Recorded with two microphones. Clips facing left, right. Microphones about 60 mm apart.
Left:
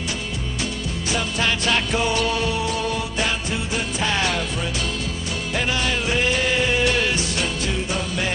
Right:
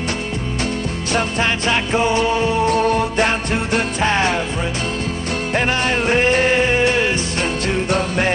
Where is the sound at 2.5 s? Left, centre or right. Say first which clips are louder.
Right 8 dB; right.